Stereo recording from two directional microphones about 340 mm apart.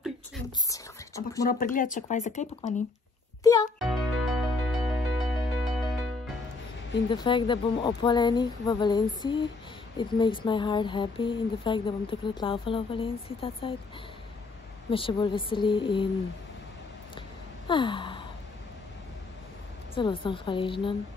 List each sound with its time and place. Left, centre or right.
0.7 s a sound: centre
1.5 s speech: left
3.8 s music: centre
7.1 s speech: centre
14.9 s speech: centre
17.6 s gasp: centre
19.9 s speech: centre